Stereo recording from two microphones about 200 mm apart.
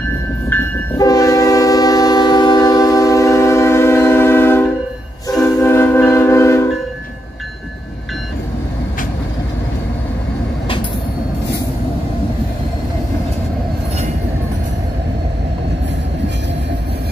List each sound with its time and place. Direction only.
0.5 s train: 20° left (ahead or behind)
5.4 s music: 10° left (ahead or behind)